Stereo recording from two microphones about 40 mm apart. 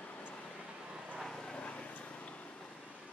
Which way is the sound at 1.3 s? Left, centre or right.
Centre.